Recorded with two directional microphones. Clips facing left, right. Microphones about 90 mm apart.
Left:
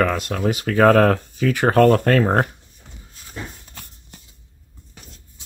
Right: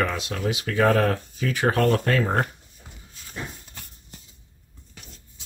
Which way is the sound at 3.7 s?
60° left (ahead or behind).